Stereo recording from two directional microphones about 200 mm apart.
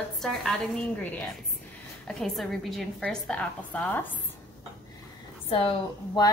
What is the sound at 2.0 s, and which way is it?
A woman's voice, centre (ahead or behind).